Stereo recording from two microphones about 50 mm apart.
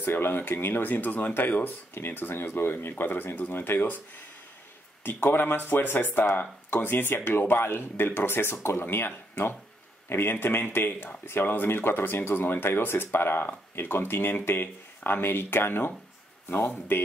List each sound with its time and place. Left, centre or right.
0.0 s speech: left
0.8 s speech: left
5.0 s speech: left
8.8 s speech: left